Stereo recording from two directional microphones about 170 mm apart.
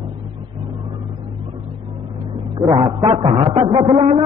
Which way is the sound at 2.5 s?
20° right (ahead or behind).